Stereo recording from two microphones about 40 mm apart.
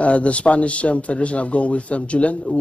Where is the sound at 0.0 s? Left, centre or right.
Left.